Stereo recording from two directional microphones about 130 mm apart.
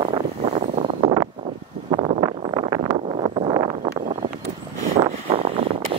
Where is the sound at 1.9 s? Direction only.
45° right (ahead or behind).